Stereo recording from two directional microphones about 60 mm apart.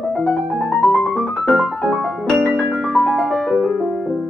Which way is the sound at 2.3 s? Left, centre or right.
Centre.